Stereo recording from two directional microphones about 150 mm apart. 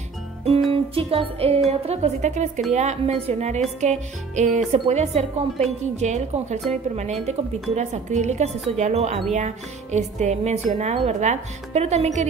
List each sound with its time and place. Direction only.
0.7 s music: 40° right (ahead or behind)
1.7 s speech: 45° right (ahead or behind)